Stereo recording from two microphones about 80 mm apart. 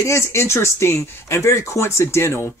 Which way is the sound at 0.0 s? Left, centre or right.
Left.